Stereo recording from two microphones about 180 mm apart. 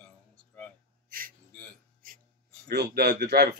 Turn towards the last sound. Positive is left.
turn(degrees=-65)  # may be behind; listen again after turning